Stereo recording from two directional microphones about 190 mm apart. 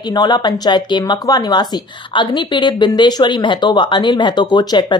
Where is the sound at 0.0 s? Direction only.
20° left (ahead or behind).